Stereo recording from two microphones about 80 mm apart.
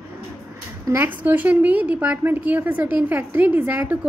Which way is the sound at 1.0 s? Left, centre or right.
Right.